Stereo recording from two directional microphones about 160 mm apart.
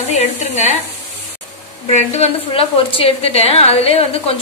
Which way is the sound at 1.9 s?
45° left (ahead or behind).